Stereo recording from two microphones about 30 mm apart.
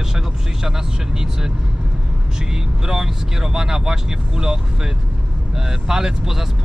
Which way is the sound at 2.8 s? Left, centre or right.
Centre.